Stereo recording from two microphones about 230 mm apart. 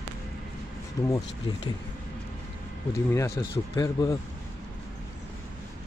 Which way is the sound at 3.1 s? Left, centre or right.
Centre.